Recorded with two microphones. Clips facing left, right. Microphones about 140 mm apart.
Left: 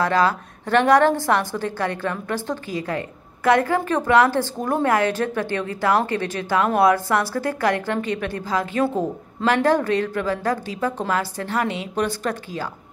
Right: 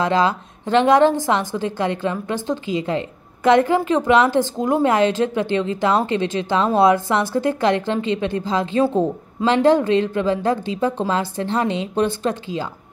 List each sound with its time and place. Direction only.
0.0 s a woman's voice: 20° right (ahead or behind)